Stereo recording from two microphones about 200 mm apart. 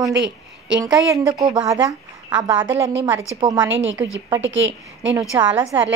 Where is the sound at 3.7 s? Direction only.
70° right (ahead or behind).